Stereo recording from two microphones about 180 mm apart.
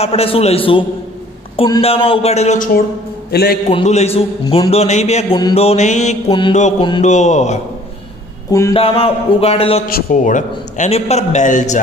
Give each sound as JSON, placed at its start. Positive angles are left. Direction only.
{"t": 0.0, "sound": "a man's voice", "side_deg": 35}
{"t": 3.3, "sound": "a man's voice", "side_deg": 60}
{"t": 3.7, "sound": "a man's voice", "side_deg": 35}
{"t": 8.5, "sound": "speech", "side_deg": 20}
{"t": 8.7, "sound": "a man's voice", "side_deg": 30}
{"t": 9.8, "sound": "a man's voice", "side_deg": 55}